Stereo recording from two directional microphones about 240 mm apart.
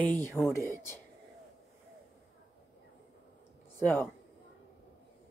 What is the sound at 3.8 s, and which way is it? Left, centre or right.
Speech, centre.